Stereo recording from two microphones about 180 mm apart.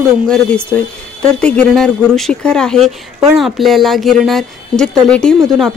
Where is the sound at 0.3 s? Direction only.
5° left (ahead or behind).